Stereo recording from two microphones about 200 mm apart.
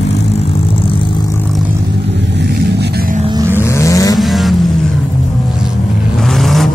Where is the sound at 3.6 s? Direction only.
15° left (ahead or behind).